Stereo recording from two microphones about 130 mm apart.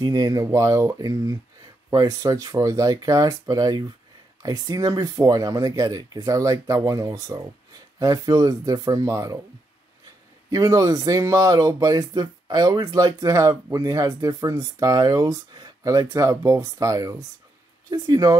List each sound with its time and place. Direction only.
0.0 s speech: 30° right (ahead or behind)
10.5 s speech: 25° right (ahead or behind)